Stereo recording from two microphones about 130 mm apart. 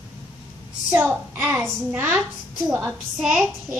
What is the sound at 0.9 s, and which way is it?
A woman's voice, 15° right (ahead or behind).